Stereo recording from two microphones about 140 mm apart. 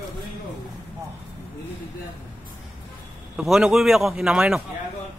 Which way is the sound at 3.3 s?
5° right (ahead or behind).